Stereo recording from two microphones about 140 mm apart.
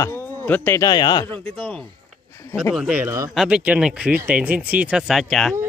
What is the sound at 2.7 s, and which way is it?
Speech, 10° right (ahead or behind).